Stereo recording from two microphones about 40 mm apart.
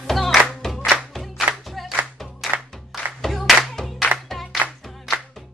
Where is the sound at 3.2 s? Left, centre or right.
Centre.